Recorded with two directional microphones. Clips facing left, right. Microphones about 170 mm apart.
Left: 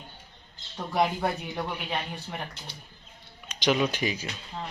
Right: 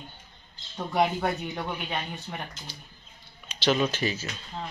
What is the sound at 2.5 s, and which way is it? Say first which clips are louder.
Speech: even; 65° left (ahead or behind).